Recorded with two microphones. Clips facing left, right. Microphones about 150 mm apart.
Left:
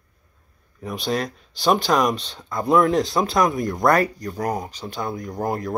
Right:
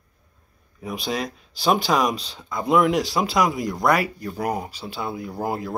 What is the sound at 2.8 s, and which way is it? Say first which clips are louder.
Speech: left 1 dB; 20° right (ahead or behind).